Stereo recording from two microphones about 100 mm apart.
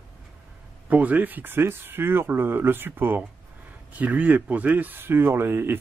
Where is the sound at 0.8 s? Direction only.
15° right (ahead or behind).